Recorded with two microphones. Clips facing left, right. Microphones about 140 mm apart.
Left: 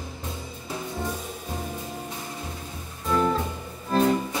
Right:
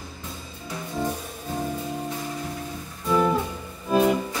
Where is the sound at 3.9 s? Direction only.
10° right (ahead or behind).